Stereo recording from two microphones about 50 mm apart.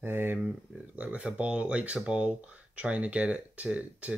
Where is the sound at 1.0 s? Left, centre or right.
Right.